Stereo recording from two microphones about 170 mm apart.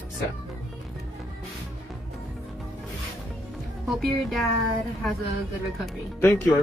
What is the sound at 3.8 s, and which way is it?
Speech, centre (ahead or behind).